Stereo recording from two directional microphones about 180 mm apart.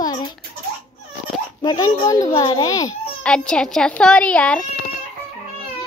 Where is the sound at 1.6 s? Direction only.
20° left (ahead or behind).